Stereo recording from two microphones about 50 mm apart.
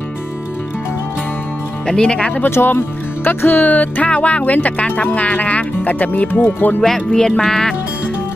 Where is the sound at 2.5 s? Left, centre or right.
Left.